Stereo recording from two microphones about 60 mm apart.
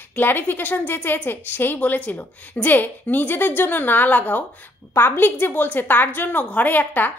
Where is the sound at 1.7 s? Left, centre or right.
Left.